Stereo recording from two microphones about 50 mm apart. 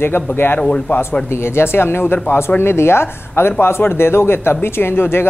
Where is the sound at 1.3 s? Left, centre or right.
Left.